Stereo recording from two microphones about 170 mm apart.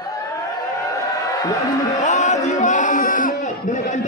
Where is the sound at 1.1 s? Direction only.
20° left (ahead or behind).